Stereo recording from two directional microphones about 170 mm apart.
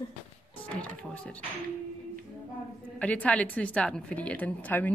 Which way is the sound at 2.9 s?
10° left (ahead or behind).